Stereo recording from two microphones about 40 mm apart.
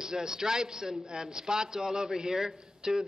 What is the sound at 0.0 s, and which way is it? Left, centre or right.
A man's voice, centre.